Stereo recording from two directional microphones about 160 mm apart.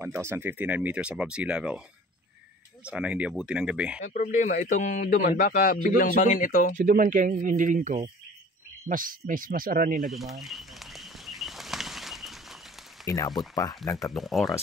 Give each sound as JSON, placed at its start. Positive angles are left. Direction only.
{"t": 0.0, "sound": "speech", "side_deg": -15}
{"t": 2.8, "sound": "speech", "side_deg": -5}
{"t": 4.0, "sound": "speech", "side_deg": 50}
{"t": 5.2, "sound": "speech", "side_deg": 65}
{"t": 6.8, "sound": "speech", "side_deg": -55}
{"t": 10.0, "sound": "speech", "side_deg": 0}
{"t": 10.4, "sound": "bird flight", "side_deg": 0}
{"t": 13.0, "sound": "speech", "side_deg": 20}
{"t": 14.1, "sound": "speech", "side_deg": 0}